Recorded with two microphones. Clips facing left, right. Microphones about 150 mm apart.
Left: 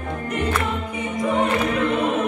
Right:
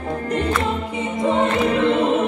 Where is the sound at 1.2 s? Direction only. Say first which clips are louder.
Right 2 dB; 25° right (ahead or behind).